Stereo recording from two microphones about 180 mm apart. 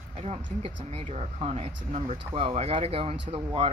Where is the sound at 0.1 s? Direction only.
35° right (ahead or behind).